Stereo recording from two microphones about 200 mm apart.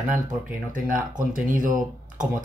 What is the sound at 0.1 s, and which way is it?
A man's voice, 40° right (ahead or behind).